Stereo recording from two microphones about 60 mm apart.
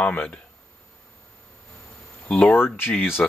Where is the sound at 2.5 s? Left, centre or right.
Left.